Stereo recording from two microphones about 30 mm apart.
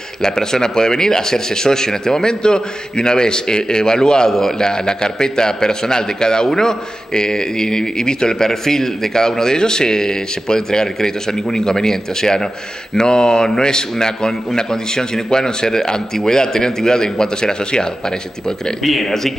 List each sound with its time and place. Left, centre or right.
0.2 s a man's voice: centre
19.0 s speech: centre